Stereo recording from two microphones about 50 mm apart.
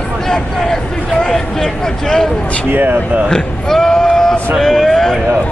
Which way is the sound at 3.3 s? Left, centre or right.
Centre.